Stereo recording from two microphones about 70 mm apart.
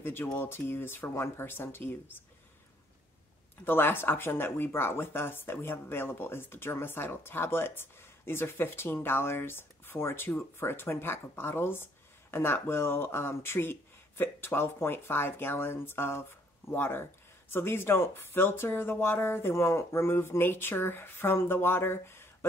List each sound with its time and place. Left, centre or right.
0.0 s speech: left
3.6 s speech: left